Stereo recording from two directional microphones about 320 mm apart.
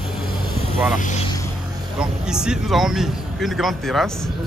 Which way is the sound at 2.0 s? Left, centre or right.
Centre.